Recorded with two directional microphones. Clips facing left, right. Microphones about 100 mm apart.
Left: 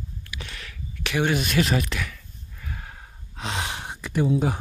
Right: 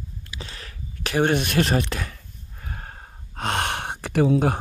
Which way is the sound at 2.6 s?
40° right (ahead or behind).